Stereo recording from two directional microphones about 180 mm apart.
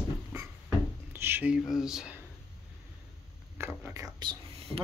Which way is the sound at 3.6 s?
15° right (ahead or behind).